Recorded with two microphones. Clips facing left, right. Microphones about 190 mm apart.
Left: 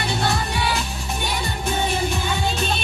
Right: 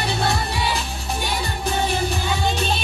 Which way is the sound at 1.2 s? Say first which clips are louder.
Even; 35° right (ahead or behind).